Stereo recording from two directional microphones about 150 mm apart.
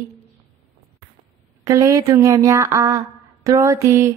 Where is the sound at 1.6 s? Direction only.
20° right (ahead or behind).